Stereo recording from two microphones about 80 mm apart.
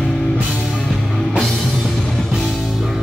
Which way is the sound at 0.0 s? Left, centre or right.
Centre.